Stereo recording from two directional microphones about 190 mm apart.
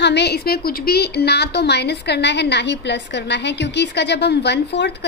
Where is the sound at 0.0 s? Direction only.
60° left (ahead or behind).